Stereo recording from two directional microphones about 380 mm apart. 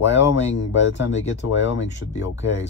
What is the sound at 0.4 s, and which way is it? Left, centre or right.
Speech, left.